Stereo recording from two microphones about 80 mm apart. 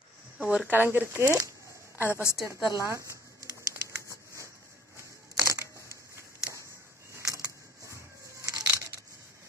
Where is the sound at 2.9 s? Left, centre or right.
Right.